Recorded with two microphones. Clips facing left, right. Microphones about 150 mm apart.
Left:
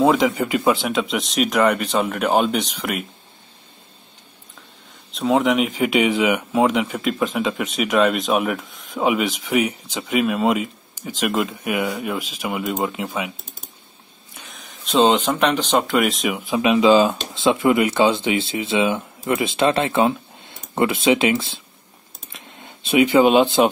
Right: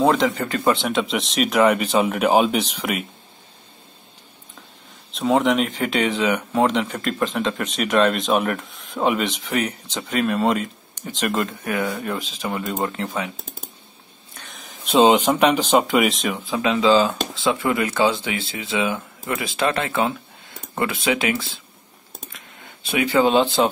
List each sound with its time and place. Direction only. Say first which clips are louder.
0.0 s speech: left 2 dB; 5° left (ahead or behind)
5.1 s speech: left 1 dB; centre (ahead or behind)
14.3 s a sound: even; 5° left (ahead or behind)
14.9 s speech: right 2 dB; 10° right (ahead or behind)
16.3 s speech: left 4 dB; 15° left (ahead or behind)